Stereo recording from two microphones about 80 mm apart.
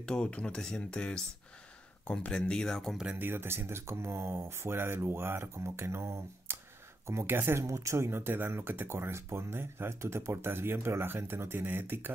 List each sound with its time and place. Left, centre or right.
0.0 s speech: centre
3.2 s speech: right
7.6 s speech: right